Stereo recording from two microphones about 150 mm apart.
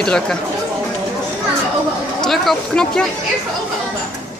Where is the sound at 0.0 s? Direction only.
5° left (ahead or behind).